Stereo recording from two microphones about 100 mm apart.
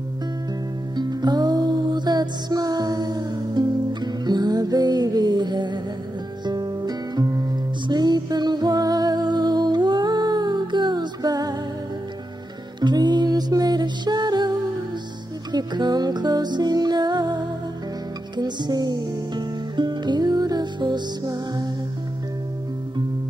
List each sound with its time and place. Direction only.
0.9 s music: 45° right (ahead or behind)
12.8 s music: 45° right (ahead or behind)
15.5 s music: 45° right (ahead or behind)